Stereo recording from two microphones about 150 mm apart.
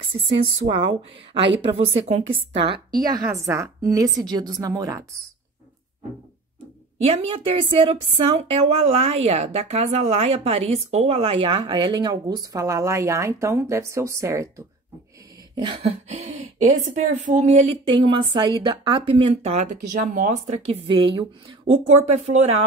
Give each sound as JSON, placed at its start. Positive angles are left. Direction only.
{"t": 0.0, "sound": "a woman's voice", "side_deg": -35}
{"t": 3.4, "sound": "a woman's voice", "side_deg": -20}
{"t": 7.0, "sound": "a woman's voice", "side_deg": -40}
{"t": 15.5, "sound": "a sound", "side_deg": -30}
{"t": 15.8, "sound": "a woman's voice", "side_deg": -45}
{"t": 20.8, "sound": "a woman's voice", "side_deg": -30}
{"t": 21.8, "sound": "a woman's voice", "side_deg": -45}